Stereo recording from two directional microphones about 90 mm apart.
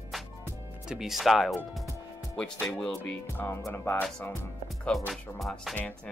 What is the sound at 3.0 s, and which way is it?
Music, 20° left (ahead or behind).